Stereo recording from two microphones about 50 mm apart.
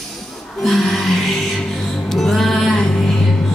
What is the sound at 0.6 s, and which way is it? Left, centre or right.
Music, centre.